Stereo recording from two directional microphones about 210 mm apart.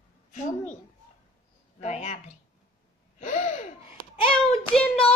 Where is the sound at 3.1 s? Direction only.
35° left (ahead or behind).